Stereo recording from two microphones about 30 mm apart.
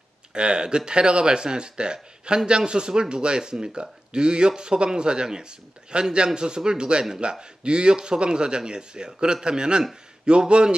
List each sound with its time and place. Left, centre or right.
0.3 s speech: right